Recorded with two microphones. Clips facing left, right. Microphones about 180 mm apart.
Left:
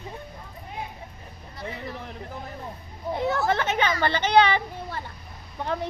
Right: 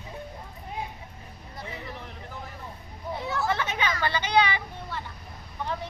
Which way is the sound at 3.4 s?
50° left (ahead or behind).